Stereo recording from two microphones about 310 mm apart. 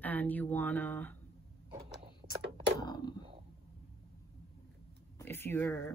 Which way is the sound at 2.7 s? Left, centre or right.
Centre.